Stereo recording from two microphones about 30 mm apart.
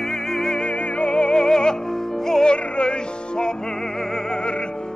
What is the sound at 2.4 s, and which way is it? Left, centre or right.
Music, left.